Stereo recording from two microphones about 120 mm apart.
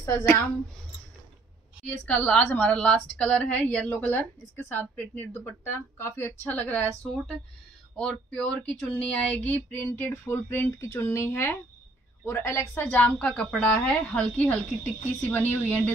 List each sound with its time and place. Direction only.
0.0 s a woman's voice: 20° left (ahead or behind)
1.9 s a woman's voice: 10° left (ahead or behind)
7.9 s a woman's voice: 10° left (ahead or behind)